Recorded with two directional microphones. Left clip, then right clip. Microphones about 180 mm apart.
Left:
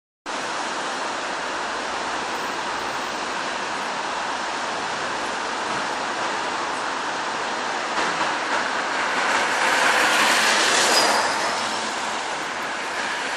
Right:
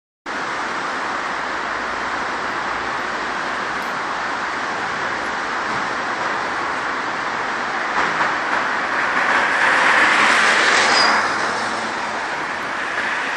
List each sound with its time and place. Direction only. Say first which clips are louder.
9.7 s vehicle: right 4 dB; 35° left (ahead or behind)